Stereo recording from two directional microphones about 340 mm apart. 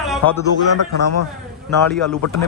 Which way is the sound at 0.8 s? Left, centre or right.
Left.